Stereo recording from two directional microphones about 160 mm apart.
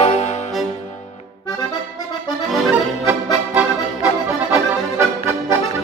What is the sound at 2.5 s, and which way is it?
Accordion, centre (ahead or behind).